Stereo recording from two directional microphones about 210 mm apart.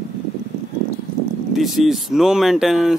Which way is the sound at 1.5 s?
Centre (ahead or behind).